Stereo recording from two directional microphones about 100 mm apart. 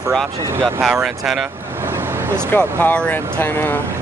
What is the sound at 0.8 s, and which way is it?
Speech, 5° right (ahead or behind).